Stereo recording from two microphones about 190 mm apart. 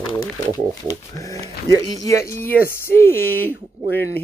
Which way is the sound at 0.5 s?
20° left (ahead or behind).